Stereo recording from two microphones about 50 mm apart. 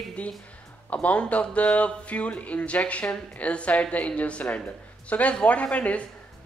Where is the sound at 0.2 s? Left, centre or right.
Left.